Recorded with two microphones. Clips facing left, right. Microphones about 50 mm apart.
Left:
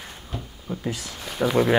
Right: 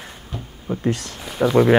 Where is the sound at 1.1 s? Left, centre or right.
Centre.